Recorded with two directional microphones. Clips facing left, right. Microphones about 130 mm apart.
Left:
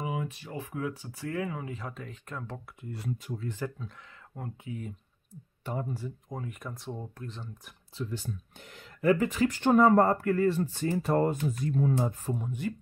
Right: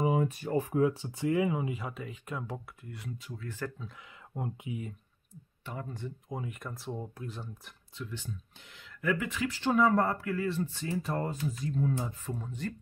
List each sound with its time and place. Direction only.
0.0 s speech: 40° right (ahead or behind); by 2.6 s 10° right (ahead or behind)
3.4 s speech: 15° left (ahead or behind)
4.4 s speech: 15° right (ahead or behind)
5.9 s speech: 5° left (ahead or behind)
8.0 s speech: 40° left (ahead or behind); by 12.2 s 55° left (ahead or behind)
12.4 s speech: 10° left (ahead or behind)